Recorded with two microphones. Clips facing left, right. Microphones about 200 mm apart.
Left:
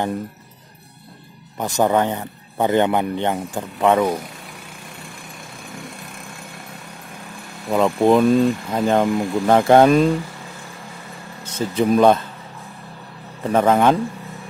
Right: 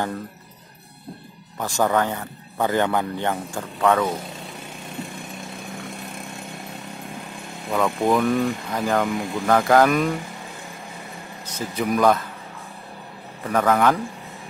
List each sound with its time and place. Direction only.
1.6 s a man's voice: 20° left (ahead or behind)
7.7 s a man's voice: 20° left (ahead or behind)
11.5 s a man's voice: 30° left (ahead or behind)
13.5 s a man's voice: 25° left (ahead or behind)